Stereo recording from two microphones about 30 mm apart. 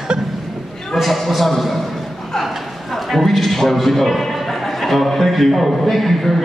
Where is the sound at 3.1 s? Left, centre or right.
Centre.